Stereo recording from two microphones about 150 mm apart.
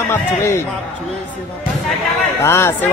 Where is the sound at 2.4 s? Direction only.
15° left (ahead or behind).